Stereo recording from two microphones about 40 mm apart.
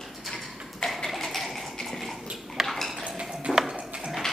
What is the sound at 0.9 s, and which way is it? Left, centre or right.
Ratchet, centre.